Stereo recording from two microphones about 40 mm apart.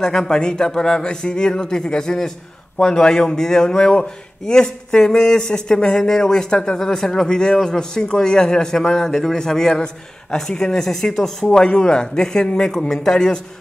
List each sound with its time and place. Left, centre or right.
0.0 s a man's voice: centre